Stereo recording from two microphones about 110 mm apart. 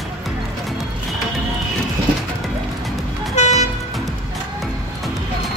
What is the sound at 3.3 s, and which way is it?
Vehicle, 85° left.